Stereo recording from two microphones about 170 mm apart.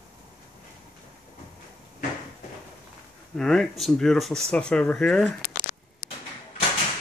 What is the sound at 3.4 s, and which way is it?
Speech, 5° left (ahead or behind).